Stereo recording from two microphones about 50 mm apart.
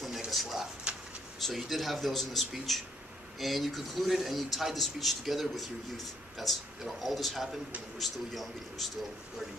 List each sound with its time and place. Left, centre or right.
0.3 s speech: centre
0.9 s a sound: right
1.4 s speech: centre